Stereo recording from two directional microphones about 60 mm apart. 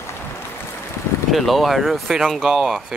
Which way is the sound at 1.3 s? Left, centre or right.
Centre.